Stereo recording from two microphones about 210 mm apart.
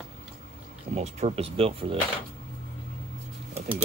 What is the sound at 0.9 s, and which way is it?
Speech, 30° right (ahead or behind).